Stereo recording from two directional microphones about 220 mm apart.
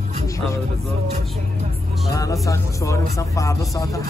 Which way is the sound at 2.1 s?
15° left (ahead or behind).